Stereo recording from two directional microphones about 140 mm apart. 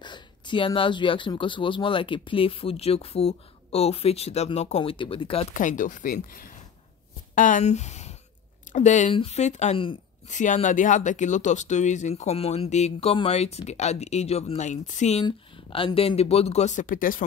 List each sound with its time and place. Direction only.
0.0 s speech: 35° left (ahead or behind)
5.5 s speech: 65° left (ahead or behind)
7.3 s speech: 65° left (ahead or behind)
15.2 s speech: 40° left (ahead or behind); by 17.2 s 75° left (ahead or behind)